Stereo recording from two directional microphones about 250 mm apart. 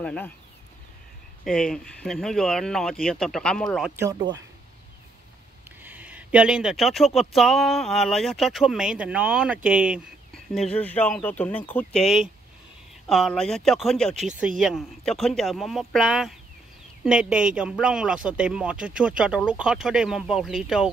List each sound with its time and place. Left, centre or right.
0.0 s speech: centre
1.4 s speech: centre
4.0 s speech: centre
5.8 s a sound: centre
7.2 s speech: centre